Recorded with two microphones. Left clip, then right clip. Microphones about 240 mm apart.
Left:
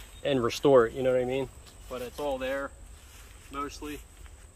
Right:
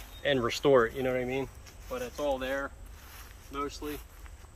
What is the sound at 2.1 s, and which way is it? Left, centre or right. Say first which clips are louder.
Speech: even; left.